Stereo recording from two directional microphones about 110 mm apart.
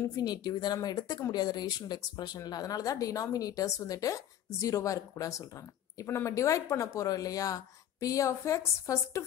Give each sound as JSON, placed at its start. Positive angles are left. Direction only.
{"t": 0.0, "sound": "speech", "side_deg": 35}